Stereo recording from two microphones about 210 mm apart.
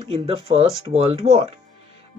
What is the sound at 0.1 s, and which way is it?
Speech, 25° right (ahead or behind).